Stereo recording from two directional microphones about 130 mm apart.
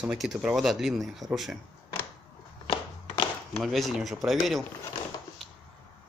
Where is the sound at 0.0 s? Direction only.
5° right (ahead or behind).